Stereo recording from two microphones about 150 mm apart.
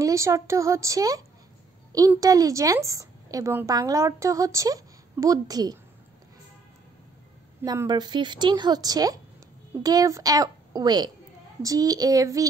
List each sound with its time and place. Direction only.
0.0 s a woman's voice: 20° right (ahead or behind)
7.6 s a woman's voice: 25° right (ahead or behind)